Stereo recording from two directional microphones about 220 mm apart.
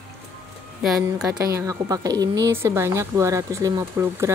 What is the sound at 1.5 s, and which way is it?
Speech, 15° right (ahead or behind).